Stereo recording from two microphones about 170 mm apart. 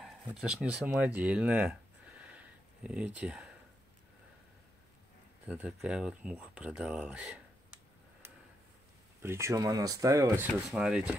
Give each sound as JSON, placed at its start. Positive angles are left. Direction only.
{"t": 0.0, "sound": "speech", "side_deg": -5}
{"t": 5.5, "sound": "speech", "side_deg": -5}
{"t": 10.7, "sound": "speech", "side_deg": -5}